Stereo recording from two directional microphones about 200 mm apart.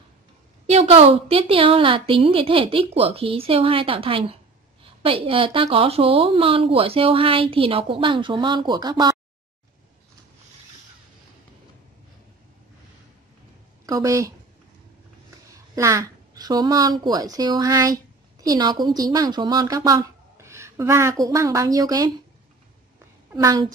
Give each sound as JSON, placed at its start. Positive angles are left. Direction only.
{"t": 0.7, "sound": "speech", "side_deg": -30}
{"t": 13.8, "sound": "a woman's voice", "side_deg": -15}
{"t": 15.7, "sound": "speech", "side_deg": -15}
{"t": 23.3, "sound": "a woman's voice", "side_deg": -15}